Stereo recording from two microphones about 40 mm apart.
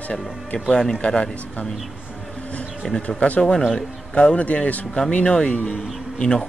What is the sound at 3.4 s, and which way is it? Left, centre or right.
Speech, centre.